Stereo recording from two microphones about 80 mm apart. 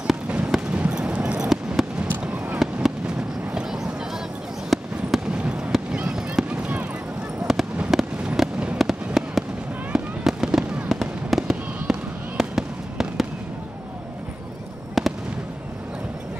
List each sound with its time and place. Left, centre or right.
0.3 s fireworks: centre
5.4 s fireworks: centre
7.4 s a sound: centre
7.9 s fireworks: centre
15.0 s fireworks: centre